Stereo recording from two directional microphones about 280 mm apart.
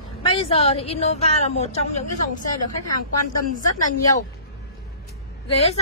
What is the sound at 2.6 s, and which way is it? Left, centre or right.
Speech, left.